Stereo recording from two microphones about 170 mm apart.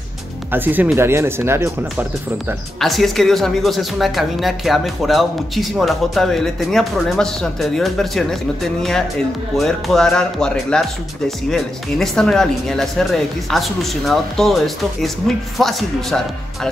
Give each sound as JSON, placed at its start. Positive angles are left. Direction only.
{"t": 0.5, "sound": "speech", "side_deg": -10}
{"t": 2.8, "sound": "speech", "side_deg": 0}
{"t": 9.6, "sound": "speech", "side_deg": 0}